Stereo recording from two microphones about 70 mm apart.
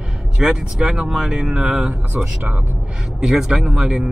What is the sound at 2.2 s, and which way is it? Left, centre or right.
Speech, centre.